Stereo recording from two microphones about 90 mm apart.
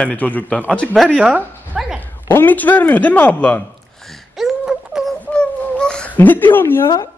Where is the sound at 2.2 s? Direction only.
25° left (ahead or behind).